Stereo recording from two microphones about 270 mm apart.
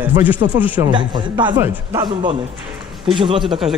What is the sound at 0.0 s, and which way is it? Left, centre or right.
Speech, centre.